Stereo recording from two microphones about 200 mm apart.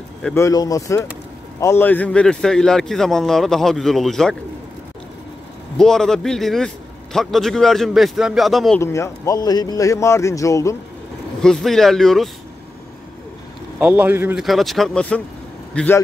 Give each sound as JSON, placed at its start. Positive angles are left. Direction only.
{"t": 0.2, "sound": "a man's voice", "side_deg": 15}
{"t": 5.8, "sound": "a man's voice", "side_deg": 5}
{"t": 8.8, "sound": "speech", "side_deg": 15}
{"t": 11.4, "sound": "a man's voice", "side_deg": 0}
{"t": 13.7, "sound": "a man's voice", "side_deg": -10}